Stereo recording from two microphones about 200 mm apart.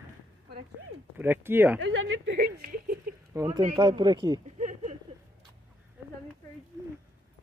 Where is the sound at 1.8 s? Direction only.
75° right (ahead or behind); by 2.8 s 45° right (ahead or behind).